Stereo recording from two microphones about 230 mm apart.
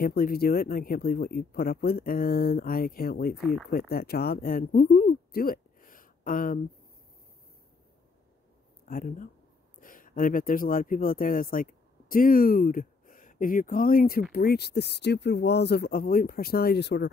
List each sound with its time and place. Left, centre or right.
0.0 s speech: left
3.3 s speech: centre
3.9 s speech: left
8.8 s speech: left